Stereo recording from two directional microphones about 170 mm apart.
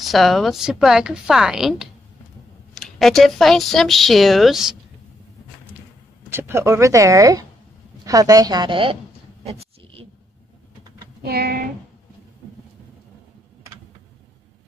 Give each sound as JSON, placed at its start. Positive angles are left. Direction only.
{"t": 0.0, "sound": "speech", "side_deg": 0}
{"t": 6.3, "sound": "a woman's voice", "side_deg": -15}
{"t": 9.4, "sound": "a sound", "side_deg": -35}
{"t": 11.2, "sound": "speech", "side_deg": -65}